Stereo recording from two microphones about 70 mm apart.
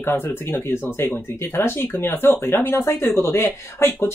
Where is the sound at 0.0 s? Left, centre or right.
Left.